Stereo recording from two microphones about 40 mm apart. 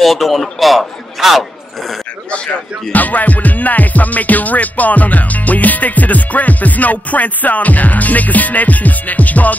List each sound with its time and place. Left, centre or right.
0.0 s a man's voice: centre
2.9 s music: left